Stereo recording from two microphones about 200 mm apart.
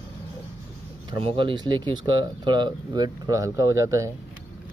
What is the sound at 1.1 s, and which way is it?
Speech, 25° right (ahead or behind).